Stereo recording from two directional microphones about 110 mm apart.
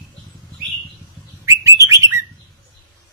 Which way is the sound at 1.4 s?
30° right (ahead or behind).